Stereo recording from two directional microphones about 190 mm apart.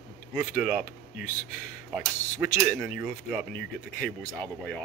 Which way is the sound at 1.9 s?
5° right (ahead or behind).